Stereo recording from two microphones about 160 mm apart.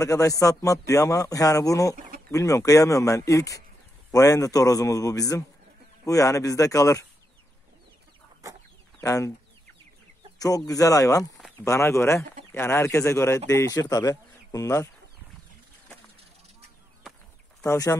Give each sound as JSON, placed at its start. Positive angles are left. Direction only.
{"t": 0.0, "sound": "speech", "side_deg": 20}
{"t": 9.0, "sound": "speech", "side_deg": 20}
{"t": 10.7, "sound": "speech", "side_deg": 20}
{"t": 17.6, "sound": "speech", "side_deg": 15}